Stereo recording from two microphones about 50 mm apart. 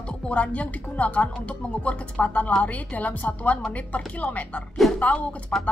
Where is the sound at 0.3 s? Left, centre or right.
Left.